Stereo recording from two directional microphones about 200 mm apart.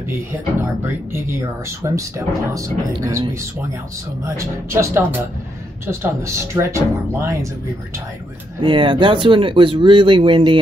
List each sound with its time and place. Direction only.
0.1 s speech: 10° right (ahead or behind)
4.4 s speech: 15° right (ahead or behind)
8.6 s speech: 25° right (ahead or behind)